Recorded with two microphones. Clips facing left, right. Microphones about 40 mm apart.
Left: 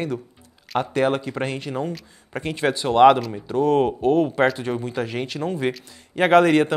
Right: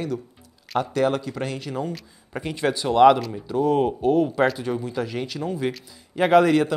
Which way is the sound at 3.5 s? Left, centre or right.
Left.